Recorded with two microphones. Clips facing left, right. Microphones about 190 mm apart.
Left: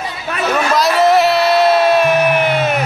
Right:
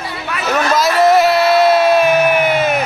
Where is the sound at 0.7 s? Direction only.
Centre (ahead or behind).